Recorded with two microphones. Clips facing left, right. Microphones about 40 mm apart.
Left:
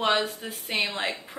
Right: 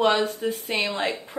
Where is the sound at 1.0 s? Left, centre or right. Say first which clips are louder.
Right 3 dB; centre.